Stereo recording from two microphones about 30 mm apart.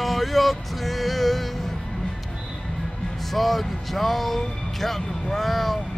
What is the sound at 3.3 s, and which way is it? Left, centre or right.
Speech, centre.